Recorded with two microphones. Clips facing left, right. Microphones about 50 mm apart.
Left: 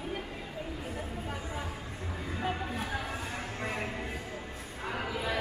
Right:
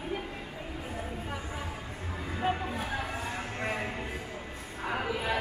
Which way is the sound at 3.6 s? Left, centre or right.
Centre.